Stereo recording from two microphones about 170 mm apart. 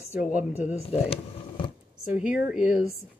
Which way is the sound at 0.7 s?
35° left (ahead or behind).